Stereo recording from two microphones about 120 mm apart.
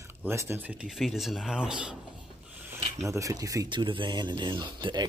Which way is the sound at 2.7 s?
25° right (ahead or behind).